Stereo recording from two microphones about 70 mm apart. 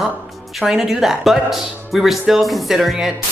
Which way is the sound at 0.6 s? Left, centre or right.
Centre.